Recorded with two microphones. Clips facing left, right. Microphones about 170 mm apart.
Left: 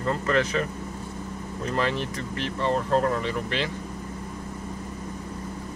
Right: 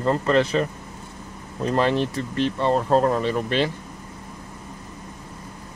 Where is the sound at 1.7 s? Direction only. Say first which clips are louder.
Right 6 dB; 35° right (ahead or behind).